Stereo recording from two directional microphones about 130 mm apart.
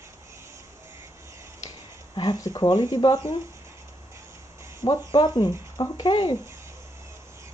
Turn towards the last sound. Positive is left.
turn(degrees=35)  # may be behind; listen again after turning